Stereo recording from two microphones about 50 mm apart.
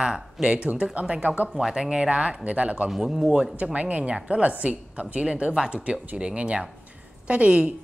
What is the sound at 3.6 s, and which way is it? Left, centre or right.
A woman's voice, right.